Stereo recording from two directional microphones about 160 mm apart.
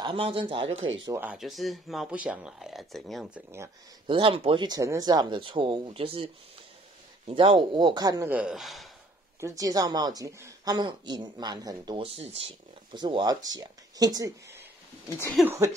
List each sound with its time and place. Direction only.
0.0 s speech: 35° right (ahead or behind)
1.1 s speech: 10° right (ahead or behind)
4.1 s speech: 35° right (ahead or behind); by 8.8 s centre (ahead or behind)
9.4 s speech: 20° right (ahead or behind)
15.0 s speech: 15° left (ahead or behind)
15.4 s speech: 15° right (ahead or behind)